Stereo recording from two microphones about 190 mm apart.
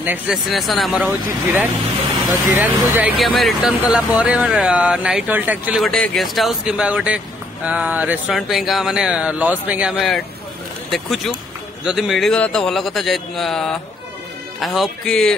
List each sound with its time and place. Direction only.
0.0 s speech: 5° right (ahead or behind)
2.5 s speech: 10° right (ahead or behind)
5.9 s speech: centre (ahead or behind)